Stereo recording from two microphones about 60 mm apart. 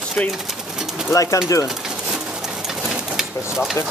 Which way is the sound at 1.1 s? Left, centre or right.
Left.